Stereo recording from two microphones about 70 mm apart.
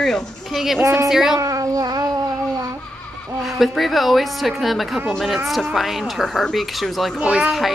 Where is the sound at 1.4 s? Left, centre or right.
Right.